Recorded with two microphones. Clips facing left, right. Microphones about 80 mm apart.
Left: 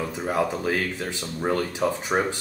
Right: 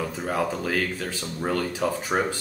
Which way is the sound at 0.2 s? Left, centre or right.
Left.